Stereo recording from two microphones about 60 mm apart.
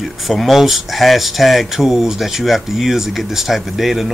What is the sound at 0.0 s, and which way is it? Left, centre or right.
Speech, centre.